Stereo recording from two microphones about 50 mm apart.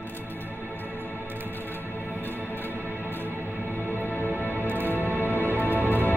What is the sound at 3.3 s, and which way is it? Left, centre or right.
Music, right.